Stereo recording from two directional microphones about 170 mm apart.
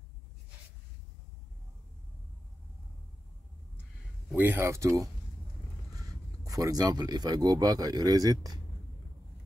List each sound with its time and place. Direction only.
4.3 s speech: 10° right (ahead or behind)